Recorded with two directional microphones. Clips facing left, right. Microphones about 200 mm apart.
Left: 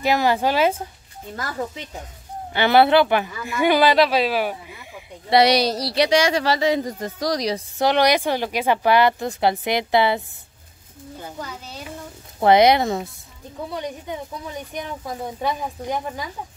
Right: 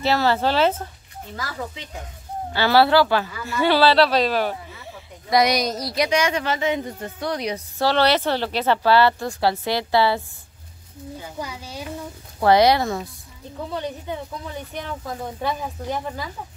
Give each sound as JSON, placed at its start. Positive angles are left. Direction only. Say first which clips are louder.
{"t": 0.0, "sound": "speech", "louder": "left 1 dB", "side_deg": 15}
{"t": 1.3, "sound": "speech", "louder": "left 3 dB", "side_deg": 55}
{"t": 2.5, "sound": "speech", "louder": "left 1 dB", "side_deg": 20}
{"t": 5.3, "sound": "speech", "louder": "left 3 dB", "side_deg": 30}
{"t": 7.8, "sound": "speech", "louder": "left 1 dB", "side_deg": 15}
{"t": 11.3, "sound": "speech", "louder": "right 4 dB", "side_deg": -10}
{"t": 12.4, "sound": "speech", "louder": "left 1 dB", "side_deg": 20}